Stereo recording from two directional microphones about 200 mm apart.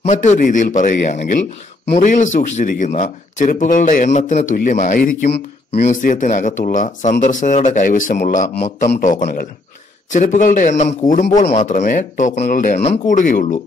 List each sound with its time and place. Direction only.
0.0 s speech: 35° left (ahead or behind)
5.3 s speech: 30° left (ahead or behind)